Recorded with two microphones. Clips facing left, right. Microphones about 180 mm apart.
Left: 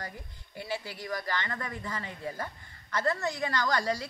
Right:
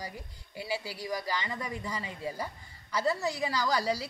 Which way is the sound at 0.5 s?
10° right (ahead or behind).